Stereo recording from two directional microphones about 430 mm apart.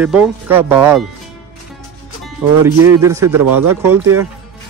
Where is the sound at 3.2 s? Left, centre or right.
Right.